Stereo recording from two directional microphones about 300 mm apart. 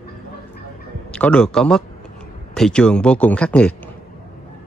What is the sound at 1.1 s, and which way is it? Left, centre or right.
A man's voice, centre.